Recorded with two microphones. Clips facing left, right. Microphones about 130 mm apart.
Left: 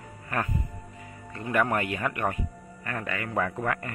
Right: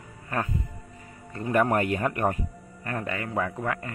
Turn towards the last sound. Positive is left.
turn(degrees=-15)  # may be behind; listen again after turning